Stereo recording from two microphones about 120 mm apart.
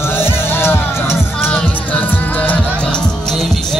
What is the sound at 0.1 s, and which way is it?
Music, 20° left (ahead or behind).